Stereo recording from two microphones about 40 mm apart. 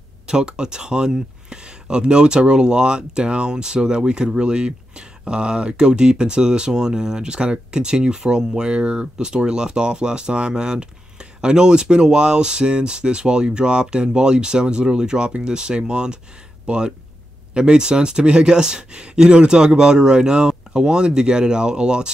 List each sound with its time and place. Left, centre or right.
0.3 s speech: right